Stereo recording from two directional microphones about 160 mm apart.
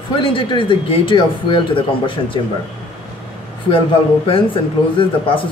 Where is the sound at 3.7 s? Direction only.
35° left (ahead or behind).